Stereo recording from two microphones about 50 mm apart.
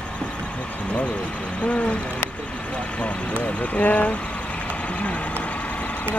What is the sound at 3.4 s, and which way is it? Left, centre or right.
Speech, left.